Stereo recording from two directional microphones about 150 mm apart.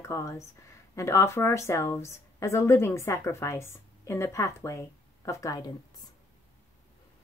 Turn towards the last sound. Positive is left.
turn(degrees=25)  # may be behind; listen again after turning